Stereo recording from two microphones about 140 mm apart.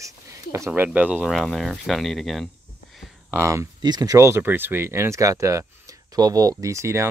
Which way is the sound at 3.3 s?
20° right (ahead or behind).